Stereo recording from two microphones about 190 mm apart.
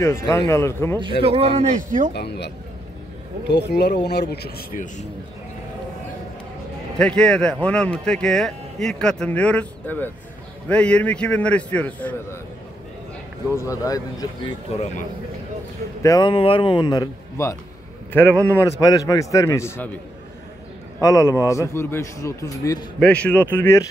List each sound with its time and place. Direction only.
0.0 s a man's voice: 15° left (ahead or behind)
1.2 s speech: 30° right (ahead or behind)
2.1 s speech: 60° left (ahead or behind)
7.0 s a man's voice: 5° left (ahead or behind)
13.5 s a man's voice: 15° left (ahead or behind)
14.7 s speech: 35° left (ahead or behind)
16.0 s a man's voice: 20° left (ahead or behind)
21.0 s a man's voice: 15° left (ahead or behind)
22.9 s a man's voice: 5° left (ahead or behind)